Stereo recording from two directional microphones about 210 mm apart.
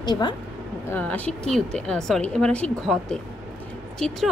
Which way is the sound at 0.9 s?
5° left (ahead or behind).